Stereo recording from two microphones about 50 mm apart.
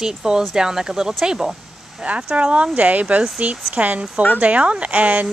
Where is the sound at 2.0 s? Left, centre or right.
Right.